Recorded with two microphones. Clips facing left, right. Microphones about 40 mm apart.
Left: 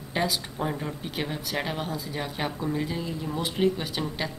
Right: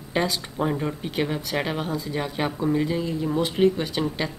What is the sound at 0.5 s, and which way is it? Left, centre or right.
Speech, centre.